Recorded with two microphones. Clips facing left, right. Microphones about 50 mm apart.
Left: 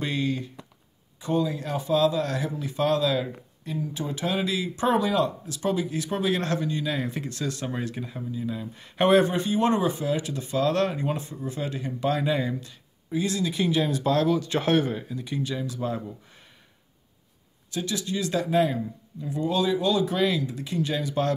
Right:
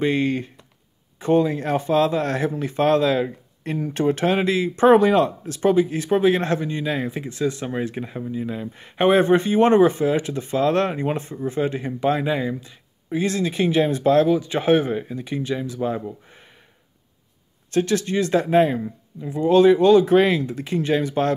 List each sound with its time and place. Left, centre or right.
0.0 s speech: right
3.6 s speech: right
7.1 s speech: centre
7.9 s speech: right
9.3 s speech: right; by 12.7 s centre
13.1 s speech: right
14.3 s speech: centre
17.6 s speech: right
19.2 s speech: right
19.5 s speech: right